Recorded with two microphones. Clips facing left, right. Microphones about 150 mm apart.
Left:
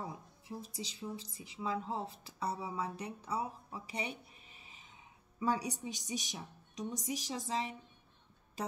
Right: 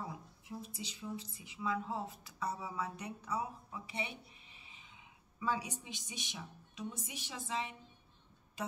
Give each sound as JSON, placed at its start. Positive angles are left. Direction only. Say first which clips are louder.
{"t": 0.0, "sound": "a woman's voice", "louder": "left 1 dB", "side_deg": 35}